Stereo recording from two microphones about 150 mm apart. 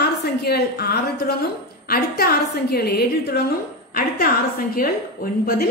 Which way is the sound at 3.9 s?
75° left (ahead or behind).